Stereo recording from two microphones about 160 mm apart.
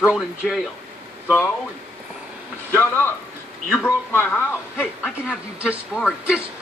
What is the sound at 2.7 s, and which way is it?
A man's voice, 15° left (ahead or behind).